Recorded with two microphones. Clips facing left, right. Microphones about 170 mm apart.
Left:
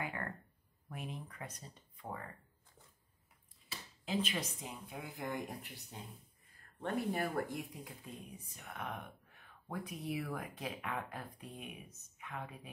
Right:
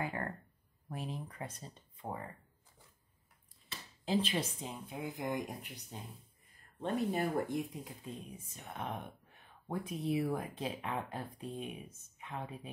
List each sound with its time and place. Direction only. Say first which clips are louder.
0.0 s a sound: right 4 dB; 30° right (ahead or behind)
0.8 s speech: right 4 dB; 35° right (ahead or behind)
4.0 s speech: right 4 dB; 30° right (ahead or behind)